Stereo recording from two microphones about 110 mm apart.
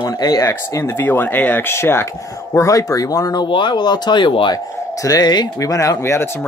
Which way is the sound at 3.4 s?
45° left (ahead or behind).